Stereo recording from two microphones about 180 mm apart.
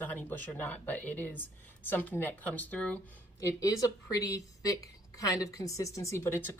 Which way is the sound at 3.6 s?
20° left (ahead or behind).